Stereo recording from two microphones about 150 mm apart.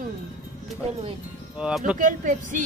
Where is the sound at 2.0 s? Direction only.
60° right (ahead or behind).